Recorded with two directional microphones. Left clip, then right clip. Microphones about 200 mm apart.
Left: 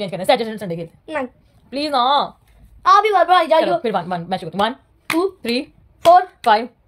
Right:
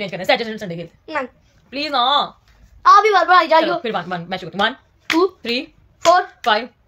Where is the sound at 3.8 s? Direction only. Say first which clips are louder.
Left 2 dB; 35° left (ahead or behind).